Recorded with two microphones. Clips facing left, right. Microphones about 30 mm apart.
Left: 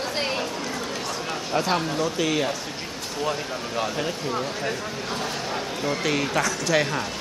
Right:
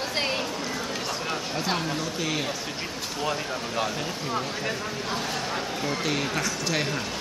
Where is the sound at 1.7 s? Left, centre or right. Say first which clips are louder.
Left 4 dB; centre.